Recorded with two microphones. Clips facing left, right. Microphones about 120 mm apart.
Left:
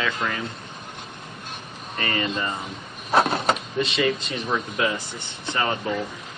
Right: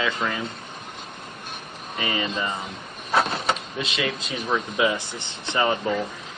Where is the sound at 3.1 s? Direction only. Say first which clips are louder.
Left 3 dB; 45° left (ahead or behind).